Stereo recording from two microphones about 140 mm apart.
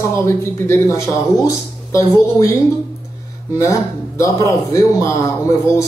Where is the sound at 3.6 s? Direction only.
20° left (ahead or behind).